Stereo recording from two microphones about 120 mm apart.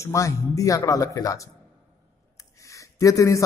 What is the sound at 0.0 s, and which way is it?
A man's voice, 25° left (ahead or behind).